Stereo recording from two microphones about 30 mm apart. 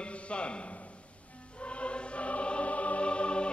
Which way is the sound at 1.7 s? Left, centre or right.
Left.